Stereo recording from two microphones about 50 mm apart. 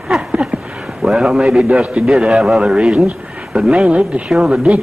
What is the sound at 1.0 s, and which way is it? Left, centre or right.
Speech, centre.